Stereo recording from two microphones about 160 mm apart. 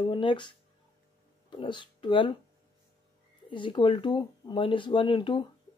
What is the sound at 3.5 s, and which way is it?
Speech, 30° left (ahead or behind).